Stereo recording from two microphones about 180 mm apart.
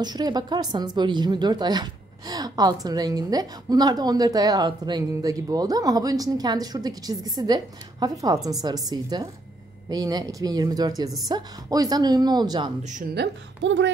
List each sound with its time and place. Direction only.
0.0 s a woman's voice: 25° right (ahead or behind)
12.8 s speech: 45° right (ahead or behind)
13.1 s speech: 75° right (ahead or behind)